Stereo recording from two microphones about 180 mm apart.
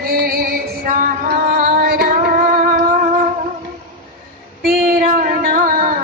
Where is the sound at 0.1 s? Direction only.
60° right (ahead or behind).